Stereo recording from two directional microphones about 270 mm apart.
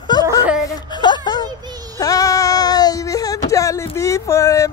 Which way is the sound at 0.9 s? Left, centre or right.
Centre.